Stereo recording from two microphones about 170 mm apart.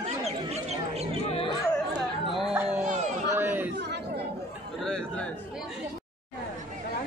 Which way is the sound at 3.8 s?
75° right (ahead or behind).